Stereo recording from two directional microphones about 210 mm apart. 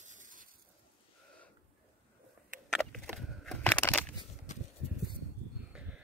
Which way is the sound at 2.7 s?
5° left (ahead or behind).